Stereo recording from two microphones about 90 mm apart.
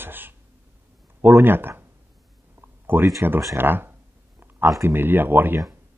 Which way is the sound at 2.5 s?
25° right (ahead or behind).